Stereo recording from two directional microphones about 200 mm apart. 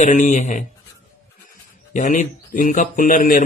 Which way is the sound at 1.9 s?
40° left (ahead or behind).